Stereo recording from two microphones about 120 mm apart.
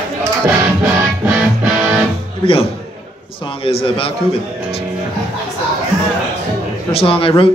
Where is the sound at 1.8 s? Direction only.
15° right (ahead or behind).